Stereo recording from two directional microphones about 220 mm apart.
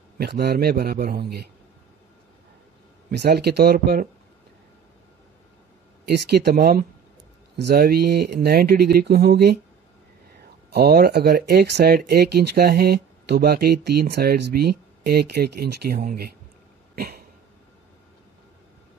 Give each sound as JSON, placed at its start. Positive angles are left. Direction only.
{"t": 0.2, "sound": "speech", "side_deg": -45}
{"t": 3.1, "sound": "speech", "side_deg": -45}
{"t": 6.0, "sound": "speech", "side_deg": -50}
{"t": 10.7, "sound": "speech", "side_deg": -45}
{"t": 16.9, "sound": "cough", "side_deg": -45}